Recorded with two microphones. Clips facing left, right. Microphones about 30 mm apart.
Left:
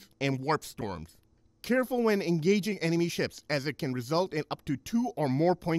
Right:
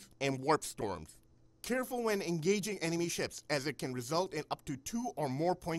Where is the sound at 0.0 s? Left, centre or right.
Centre.